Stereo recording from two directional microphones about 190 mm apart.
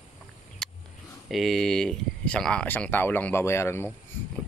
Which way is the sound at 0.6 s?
Centre (ahead or behind).